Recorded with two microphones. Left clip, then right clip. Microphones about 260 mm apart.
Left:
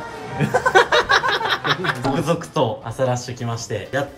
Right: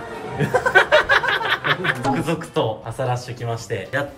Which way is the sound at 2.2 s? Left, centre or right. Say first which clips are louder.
Left 2 dB; centre.